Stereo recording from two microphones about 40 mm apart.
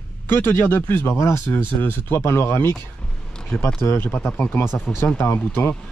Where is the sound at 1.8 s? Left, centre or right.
Left.